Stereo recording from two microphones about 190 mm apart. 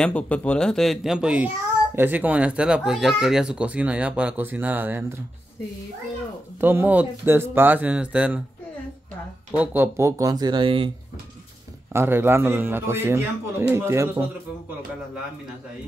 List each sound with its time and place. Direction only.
0.0 s a man's voice: 5° left (ahead or behind); by 5.0 s 10° right (ahead or behind)
6.6 s speech: 10° right (ahead or behind)
9.6 s speech: 10° right (ahead or behind); by 10.9 s 25° right (ahead or behind)
11.9 s speech: 10° right (ahead or behind)